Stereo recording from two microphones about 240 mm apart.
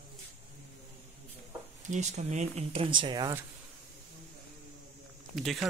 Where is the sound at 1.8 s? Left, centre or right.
Right.